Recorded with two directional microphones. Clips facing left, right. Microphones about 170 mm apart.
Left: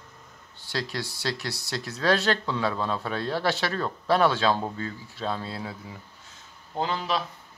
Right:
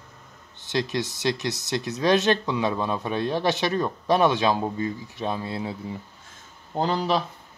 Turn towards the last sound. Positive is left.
turn(degrees=-40)  # may be behind; listen again after turning